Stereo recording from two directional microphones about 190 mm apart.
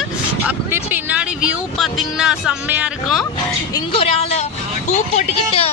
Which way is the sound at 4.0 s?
30° left (ahead or behind).